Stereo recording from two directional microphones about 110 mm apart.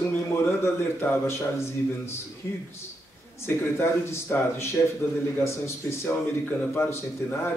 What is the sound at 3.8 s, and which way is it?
A man's voice, 25° left (ahead or behind).